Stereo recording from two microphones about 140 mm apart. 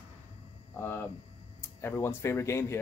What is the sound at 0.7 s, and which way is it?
Hum, 15° left (ahead or behind).